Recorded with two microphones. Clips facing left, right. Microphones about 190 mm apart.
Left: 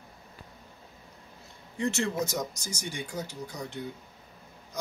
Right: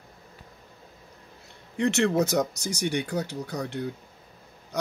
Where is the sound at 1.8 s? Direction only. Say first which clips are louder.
Right 6 dB; 65° right (ahead or behind).